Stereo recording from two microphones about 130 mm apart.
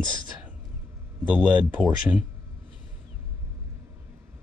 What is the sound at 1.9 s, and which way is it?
Speech, 15° right (ahead or behind).